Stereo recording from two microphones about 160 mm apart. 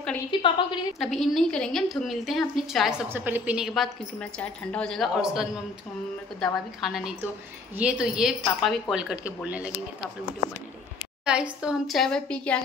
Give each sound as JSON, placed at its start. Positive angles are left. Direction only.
{"t": 0.3, "sound": "a woman's voice", "side_deg": 30}
{"t": 0.9, "sound": "a woman's voice", "side_deg": 0}
{"t": 11.2, "sound": "a woman's voice", "side_deg": -5}